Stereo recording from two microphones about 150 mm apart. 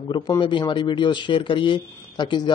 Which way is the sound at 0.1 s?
30° left (ahead or behind).